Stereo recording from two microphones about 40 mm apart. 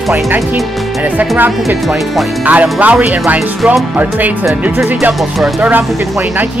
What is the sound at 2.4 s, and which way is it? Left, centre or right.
Speech, right.